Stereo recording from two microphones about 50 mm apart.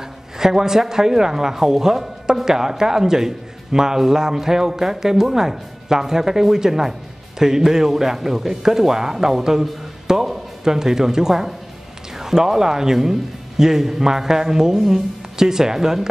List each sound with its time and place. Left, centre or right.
0.4 s speech: centre